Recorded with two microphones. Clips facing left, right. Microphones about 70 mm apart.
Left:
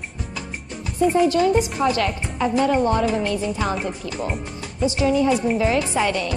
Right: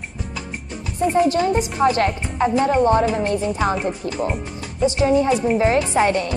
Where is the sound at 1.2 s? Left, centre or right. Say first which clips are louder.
Left 1 dB; right.